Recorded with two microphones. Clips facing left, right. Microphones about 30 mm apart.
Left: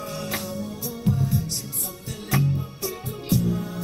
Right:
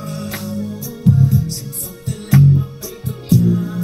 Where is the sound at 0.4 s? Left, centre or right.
Right.